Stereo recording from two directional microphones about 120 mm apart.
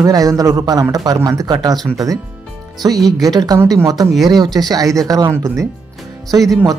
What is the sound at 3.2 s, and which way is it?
Speech, 35° right (ahead or behind).